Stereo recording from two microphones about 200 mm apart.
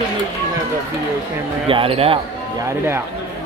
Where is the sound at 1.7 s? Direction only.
25° right (ahead or behind).